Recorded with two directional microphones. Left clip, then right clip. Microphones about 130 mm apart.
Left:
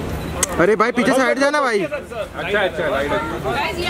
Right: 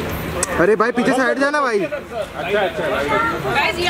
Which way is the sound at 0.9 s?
35° left (ahead or behind).